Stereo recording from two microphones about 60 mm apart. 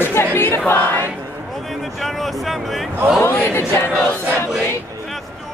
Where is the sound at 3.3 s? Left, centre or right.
Left.